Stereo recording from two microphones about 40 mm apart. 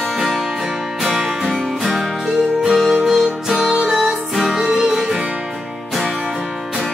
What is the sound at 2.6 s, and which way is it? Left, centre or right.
Music, centre.